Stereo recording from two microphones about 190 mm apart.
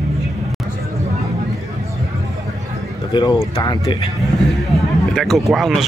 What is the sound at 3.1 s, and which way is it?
Speech, 25° left (ahead or behind).